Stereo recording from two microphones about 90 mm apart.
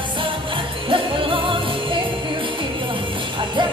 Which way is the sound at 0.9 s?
75° right (ahead or behind).